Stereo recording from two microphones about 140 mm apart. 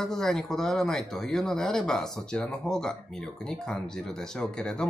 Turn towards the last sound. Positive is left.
turn(degrees=5)  # may be behind; listen again after turning